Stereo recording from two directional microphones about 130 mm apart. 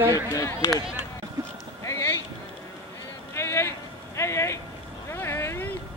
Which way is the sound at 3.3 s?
20° left (ahead or behind).